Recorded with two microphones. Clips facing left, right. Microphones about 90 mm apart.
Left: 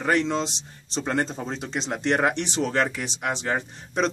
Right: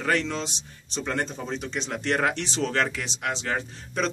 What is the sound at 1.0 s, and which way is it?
Speech, 35° left (ahead or behind).